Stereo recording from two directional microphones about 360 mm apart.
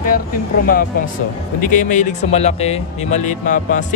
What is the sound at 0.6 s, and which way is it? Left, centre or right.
Speech, left.